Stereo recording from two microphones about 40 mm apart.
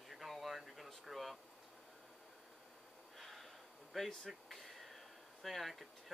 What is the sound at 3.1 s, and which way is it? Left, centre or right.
Snort, centre.